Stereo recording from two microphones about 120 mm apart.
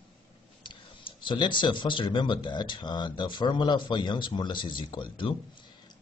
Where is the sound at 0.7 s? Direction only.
45° left (ahead or behind).